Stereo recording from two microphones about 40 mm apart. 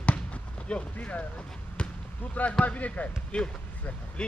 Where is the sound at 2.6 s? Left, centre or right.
Left.